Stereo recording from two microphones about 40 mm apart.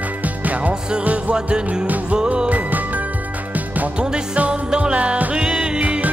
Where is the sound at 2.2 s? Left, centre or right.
Right.